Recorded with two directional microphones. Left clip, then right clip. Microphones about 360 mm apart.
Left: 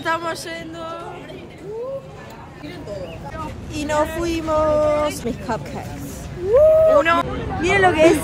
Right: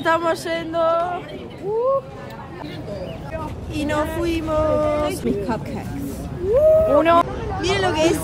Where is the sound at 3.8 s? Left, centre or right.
Centre.